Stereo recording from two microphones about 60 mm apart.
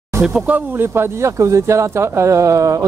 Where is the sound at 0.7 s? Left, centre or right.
Right.